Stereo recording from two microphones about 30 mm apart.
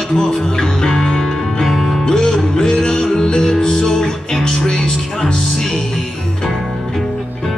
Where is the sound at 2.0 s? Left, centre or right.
Centre.